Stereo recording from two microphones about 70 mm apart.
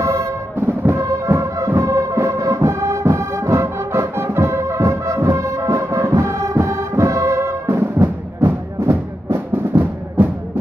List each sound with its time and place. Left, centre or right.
0.0 s music: right